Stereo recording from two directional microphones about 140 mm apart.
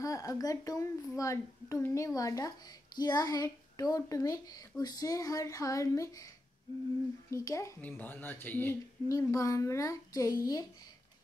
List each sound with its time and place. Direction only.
0.0 s speech: 25° left (ahead or behind)
7.2 s speech: 25° left (ahead or behind)
7.8 s speech: 10° left (ahead or behind)